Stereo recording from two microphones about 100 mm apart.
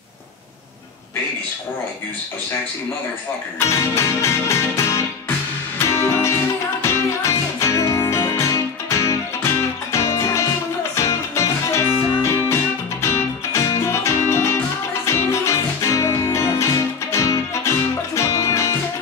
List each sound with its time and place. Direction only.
3.6 s music: 30° left (ahead or behind)
14.0 s music: 25° left (ahead or behind)